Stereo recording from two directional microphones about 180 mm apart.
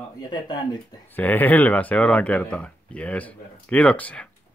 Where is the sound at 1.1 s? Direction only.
10° left (ahead or behind).